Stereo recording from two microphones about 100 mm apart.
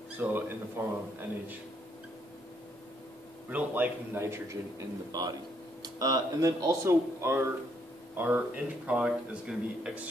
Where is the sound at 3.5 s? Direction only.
15° right (ahead or behind).